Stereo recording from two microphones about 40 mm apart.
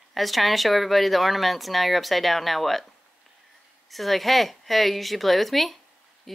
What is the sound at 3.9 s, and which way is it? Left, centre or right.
A woman's voice, centre.